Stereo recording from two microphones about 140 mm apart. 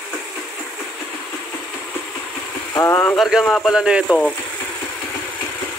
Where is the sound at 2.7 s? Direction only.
20° left (ahead or behind).